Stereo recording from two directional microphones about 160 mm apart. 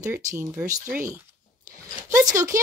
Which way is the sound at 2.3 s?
20° right (ahead or behind).